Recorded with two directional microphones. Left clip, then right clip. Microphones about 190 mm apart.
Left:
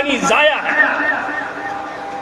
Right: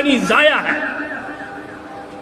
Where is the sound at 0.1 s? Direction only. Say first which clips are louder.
Even; 60° right (ahead or behind).